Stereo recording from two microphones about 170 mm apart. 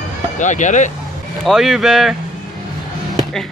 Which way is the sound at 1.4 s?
Centre (ahead or behind).